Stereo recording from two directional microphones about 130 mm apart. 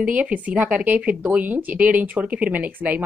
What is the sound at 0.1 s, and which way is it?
Speech, 10° right (ahead or behind).